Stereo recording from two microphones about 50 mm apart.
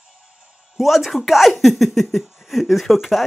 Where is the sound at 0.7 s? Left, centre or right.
Centre.